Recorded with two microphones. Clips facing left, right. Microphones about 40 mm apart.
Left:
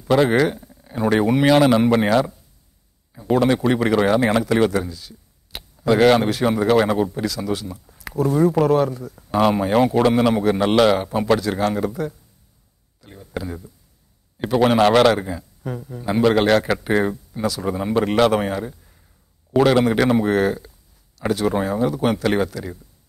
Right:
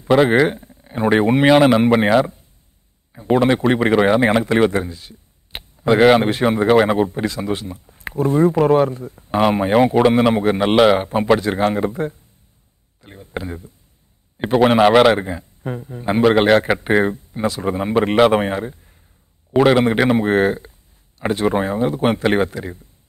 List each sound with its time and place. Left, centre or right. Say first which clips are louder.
0.0 s a man's voice: right 3 dB; right
11.0 s a man's voice: right 3 dB; right
15.1 s a man's voice: right 2 dB; right
19.5 s a man's voice: right 2 dB; right